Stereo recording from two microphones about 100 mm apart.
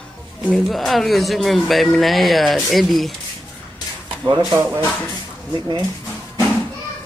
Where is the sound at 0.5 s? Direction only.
Centre (ahead or behind).